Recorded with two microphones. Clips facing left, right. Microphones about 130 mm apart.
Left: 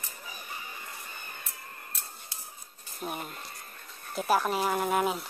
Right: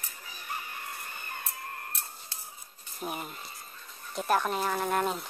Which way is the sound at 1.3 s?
60° right (ahead or behind).